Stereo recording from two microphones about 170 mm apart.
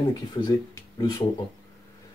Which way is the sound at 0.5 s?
20° left (ahead or behind).